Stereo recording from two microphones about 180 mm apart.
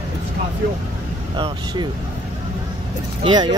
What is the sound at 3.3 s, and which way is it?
Speech, 25° right (ahead or behind).